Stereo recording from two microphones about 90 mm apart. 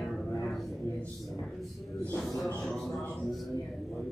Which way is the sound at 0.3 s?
5° left (ahead or behind).